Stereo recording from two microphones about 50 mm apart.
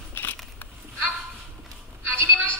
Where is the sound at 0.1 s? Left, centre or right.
Left.